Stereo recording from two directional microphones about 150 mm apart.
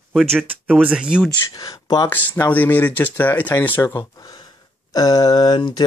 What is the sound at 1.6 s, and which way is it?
Speech, 25° left (ahead or behind).